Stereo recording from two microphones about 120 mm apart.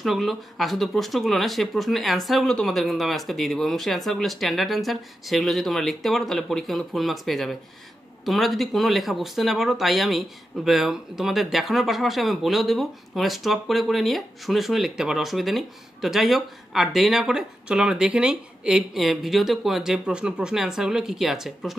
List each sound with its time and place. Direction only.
0.0 s speech: centre (ahead or behind)